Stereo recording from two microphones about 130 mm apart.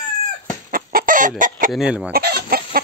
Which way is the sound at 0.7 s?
90° right.